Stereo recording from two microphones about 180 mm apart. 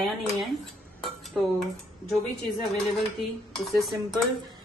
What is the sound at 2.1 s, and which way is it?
Speech, centre (ahead or behind).